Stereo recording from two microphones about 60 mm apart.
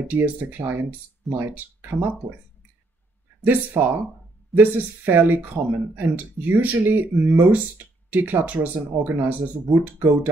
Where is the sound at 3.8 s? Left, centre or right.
Right.